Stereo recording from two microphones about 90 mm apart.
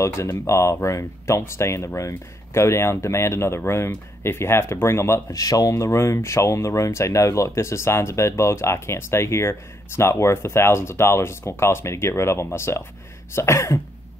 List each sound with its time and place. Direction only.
0.0 s speech: 30° left (ahead or behind)
5.3 s speech: 40° left (ahead or behind)